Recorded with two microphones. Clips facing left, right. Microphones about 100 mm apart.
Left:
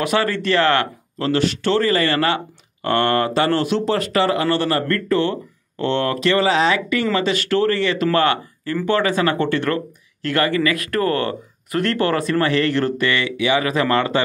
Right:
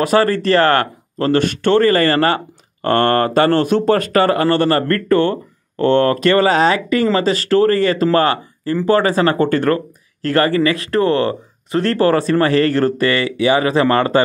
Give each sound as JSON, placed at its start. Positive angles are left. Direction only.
{"t": 0.0, "sound": "speech", "side_deg": -40}